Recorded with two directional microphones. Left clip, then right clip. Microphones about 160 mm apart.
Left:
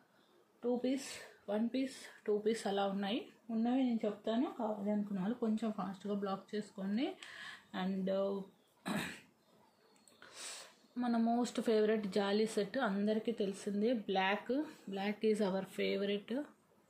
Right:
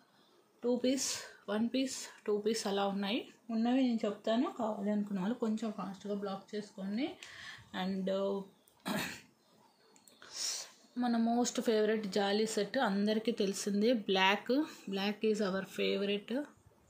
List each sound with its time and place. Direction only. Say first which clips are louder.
0.6 s a woman's voice: right 4 dB; 35° right (ahead or behind); by 3.3 s 20° right (ahead or behind)
3.4 s a woman's voice: right 3 dB; 30° right (ahead or behind)
5.8 s speech: right 1 dB; 10° left (ahead or behind)
7.7 s speech: right 1 dB; 10° right (ahead or behind)
8.8 s cough: right 3 dB; 10° right (ahead or behind)
11.0 s a woman's voice: right 2 dB; 10° right (ahead or behind); by 15.1 s 30° right (ahead or behind)
15.1 s speech: even; 10° right (ahead or behind)